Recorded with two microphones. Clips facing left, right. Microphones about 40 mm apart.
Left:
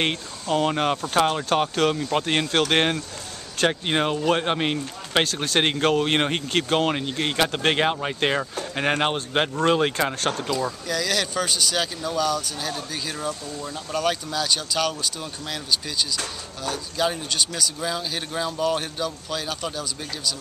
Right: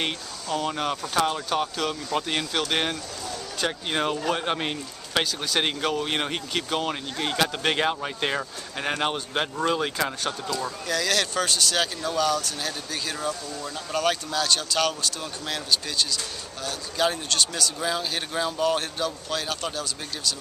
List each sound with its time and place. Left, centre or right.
0.0 s speech: left
3.6 s speech: left
5.2 s speech: left
10.5 s a man's voice: centre
17.7 s a man's voice: centre